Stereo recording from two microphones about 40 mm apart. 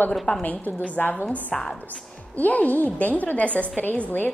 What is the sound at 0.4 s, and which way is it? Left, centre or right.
Speech, left.